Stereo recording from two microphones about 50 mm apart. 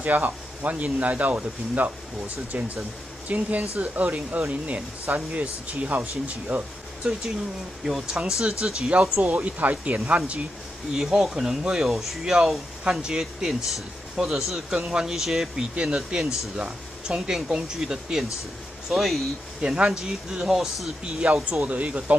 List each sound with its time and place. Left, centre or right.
0.0 s speech: right
7.8 s speech: centre
8.9 s speech: right
10.9 s speech: centre
15.7 s speech: centre
19.6 s speech: centre
21.0 s speech: right